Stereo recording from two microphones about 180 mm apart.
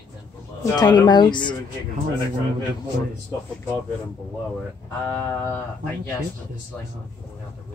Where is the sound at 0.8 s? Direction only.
25° left (ahead or behind).